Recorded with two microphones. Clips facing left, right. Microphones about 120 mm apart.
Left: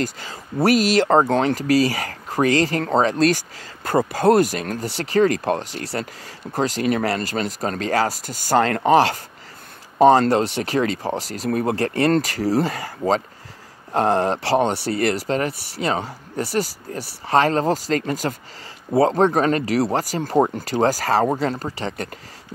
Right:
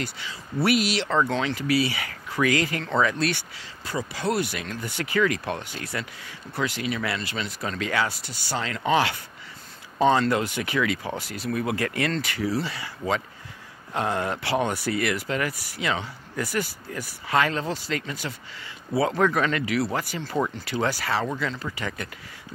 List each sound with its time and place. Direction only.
0.0 s speech: 40° left (ahead or behind)